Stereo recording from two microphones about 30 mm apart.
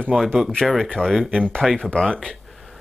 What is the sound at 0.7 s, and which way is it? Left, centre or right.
Speech, left.